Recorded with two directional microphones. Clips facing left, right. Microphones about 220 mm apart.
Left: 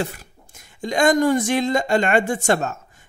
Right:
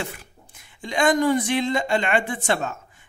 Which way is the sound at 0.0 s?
40° left (ahead or behind).